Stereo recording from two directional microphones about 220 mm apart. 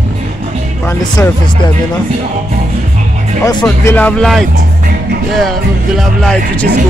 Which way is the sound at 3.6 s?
5° left (ahead or behind).